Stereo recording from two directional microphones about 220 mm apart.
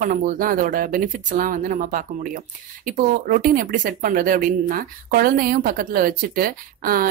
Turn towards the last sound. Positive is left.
turn(degrees=-40)  # may be behind; listen again after turning